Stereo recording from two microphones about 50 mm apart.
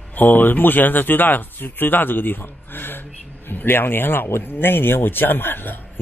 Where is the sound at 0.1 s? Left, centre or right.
Left.